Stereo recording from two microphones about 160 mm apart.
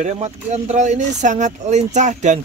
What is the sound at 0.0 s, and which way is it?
Speech, 45° right (ahead or behind).